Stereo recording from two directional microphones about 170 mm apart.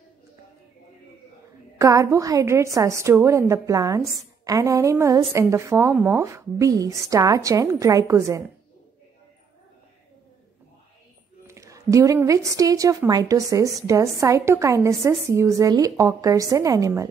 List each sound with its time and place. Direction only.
1.8 s a woman's voice: 20° right (ahead or behind)
4.0 s a woman's voice: centre (ahead or behind)
4.5 s a woman's voice: 20° right (ahead or behind)
11.4 s a woman's voice: 15° right (ahead or behind)